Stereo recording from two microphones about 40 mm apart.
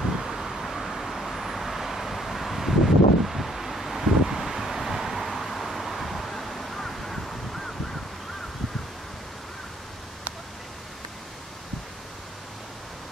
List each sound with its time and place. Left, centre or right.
0.2 s vehicle: centre